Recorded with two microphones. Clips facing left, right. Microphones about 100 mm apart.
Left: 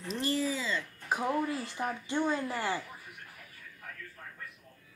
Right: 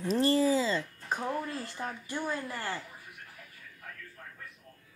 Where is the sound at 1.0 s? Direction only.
10° left (ahead or behind).